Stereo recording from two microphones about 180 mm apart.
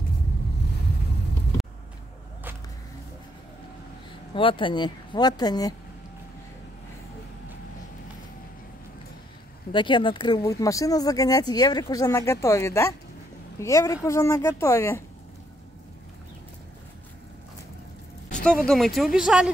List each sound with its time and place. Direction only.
4.4 s speech: 30° left (ahead or behind)
9.7 s a woman's voice: 25° left (ahead or behind)
18.7 s speech: centre (ahead or behind)